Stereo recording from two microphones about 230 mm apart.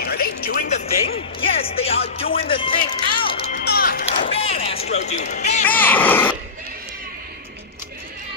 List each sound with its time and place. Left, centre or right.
0.0 s speech: left
2.3 s music: left
3.5 s music: left
5.2 s speech: left
5.7 s speech: centre